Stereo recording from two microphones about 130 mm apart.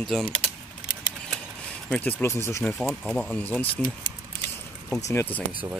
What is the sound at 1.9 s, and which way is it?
Speech, 15° left (ahead or behind).